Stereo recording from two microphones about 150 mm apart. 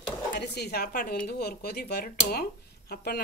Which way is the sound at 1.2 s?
90° left.